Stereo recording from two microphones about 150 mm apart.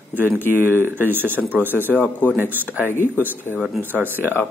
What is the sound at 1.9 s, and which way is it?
Speech, 10° left (ahead or behind).